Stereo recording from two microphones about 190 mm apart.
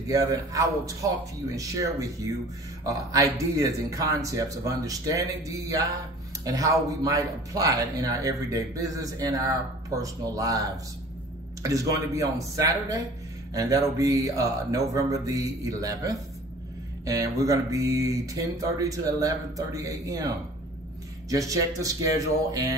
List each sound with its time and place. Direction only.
0.1 s a man's voice: 20° right (ahead or behind)
21.3 s a man's voice: 15° right (ahead or behind)
22.5 s music: 20° right (ahead or behind)